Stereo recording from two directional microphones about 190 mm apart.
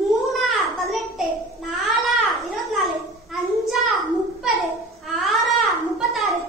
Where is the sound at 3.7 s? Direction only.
Centre (ahead or behind).